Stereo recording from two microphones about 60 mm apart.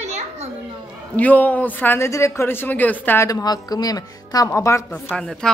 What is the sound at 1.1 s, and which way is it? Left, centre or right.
Speech, left.